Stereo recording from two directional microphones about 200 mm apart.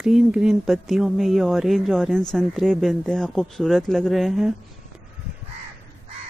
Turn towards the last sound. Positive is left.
turn(degrees=0)  # may be behind; listen again after turning